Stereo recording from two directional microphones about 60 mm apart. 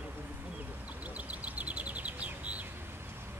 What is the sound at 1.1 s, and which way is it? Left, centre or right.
Bird, right.